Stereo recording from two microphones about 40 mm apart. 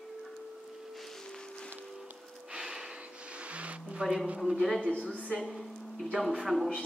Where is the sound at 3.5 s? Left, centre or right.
Right.